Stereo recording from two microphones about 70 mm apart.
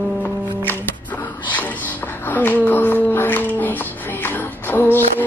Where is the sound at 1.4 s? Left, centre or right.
Left.